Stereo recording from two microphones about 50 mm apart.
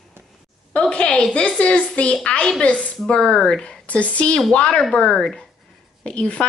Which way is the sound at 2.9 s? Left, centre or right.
Centre.